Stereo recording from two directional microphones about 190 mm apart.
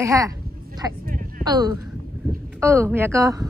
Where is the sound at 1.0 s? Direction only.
45° right (ahead or behind).